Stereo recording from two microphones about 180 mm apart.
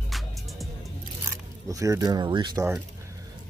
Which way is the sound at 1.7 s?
20° right (ahead or behind).